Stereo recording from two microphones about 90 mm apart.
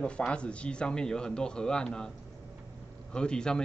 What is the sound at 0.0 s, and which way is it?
Speech, 10° left (ahead or behind).